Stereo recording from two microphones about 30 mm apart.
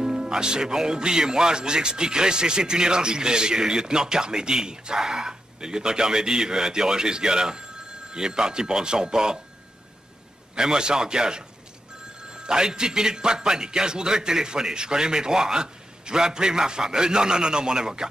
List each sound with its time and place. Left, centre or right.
0.0 s speech: right
10.5 s speech: right
12.4 s speech: right